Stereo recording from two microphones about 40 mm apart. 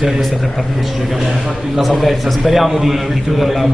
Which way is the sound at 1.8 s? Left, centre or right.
Centre.